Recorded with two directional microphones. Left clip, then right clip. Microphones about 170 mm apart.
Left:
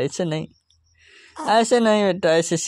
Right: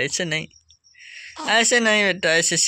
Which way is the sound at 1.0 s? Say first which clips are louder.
Right 10 dB; 45° left (ahead or behind).